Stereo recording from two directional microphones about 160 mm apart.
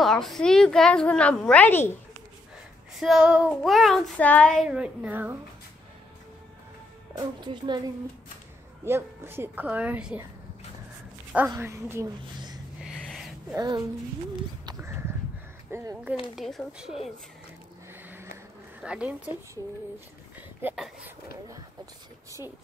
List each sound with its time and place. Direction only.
0.0 s a woman's voice: centre (ahead or behind)
3.0 s a woman's voice: 5° right (ahead or behind)
4.6 s a woman's voice: 5° right (ahead or behind)
7.2 s a woman's voice: 30° right (ahead or behind)
8.8 s a woman's voice: 15° right (ahead or behind)
11.5 s a woman's voice: 15° right (ahead or behind)
12.8 s a sound: centre (ahead or behind)
13.6 s a woman's voice: 25° right (ahead or behind)
14.7 s a sound: 15° right (ahead or behind)
15.7 s a woman's voice: 15° right (ahead or behind)
16.3 s a woman's voice: centre (ahead or behind)
18.0 s a sound: 15° right (ahead or behind)
18.8 s a woman's voice: 5° right (ahead or behind)
20.3 s a sound: 5° right (ahead or behind)